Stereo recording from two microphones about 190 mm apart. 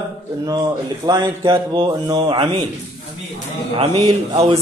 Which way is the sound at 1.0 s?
25° right (ahead or behind).